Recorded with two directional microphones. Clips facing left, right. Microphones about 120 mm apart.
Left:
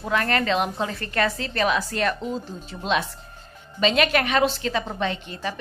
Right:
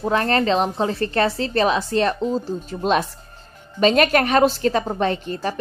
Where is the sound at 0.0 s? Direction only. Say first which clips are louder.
Right 4 dB; 30° right (ahead or behind).